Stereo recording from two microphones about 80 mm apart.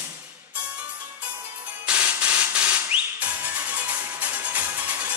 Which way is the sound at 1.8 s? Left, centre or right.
Centre.